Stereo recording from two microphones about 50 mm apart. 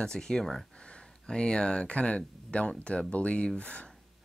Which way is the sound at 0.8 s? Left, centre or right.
Centre.